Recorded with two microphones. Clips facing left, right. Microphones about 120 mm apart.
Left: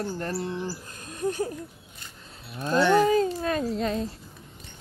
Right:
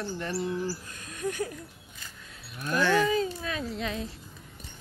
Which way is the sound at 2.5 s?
25° left (ahead or behind).